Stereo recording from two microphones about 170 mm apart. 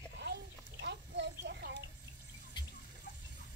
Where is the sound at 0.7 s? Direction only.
90° right.